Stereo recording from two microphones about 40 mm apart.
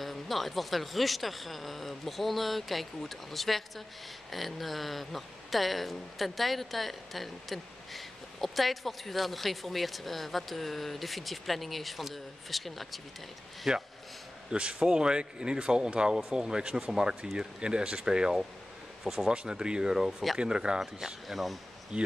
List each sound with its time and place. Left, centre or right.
0.0 s speech: centre
13.7 s speech: centre
14.5 s speech: right
20.8 s speech: centre
21.9 s speech: right